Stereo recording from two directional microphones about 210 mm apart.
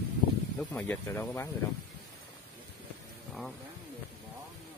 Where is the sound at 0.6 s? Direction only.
10° left (ahead or behind).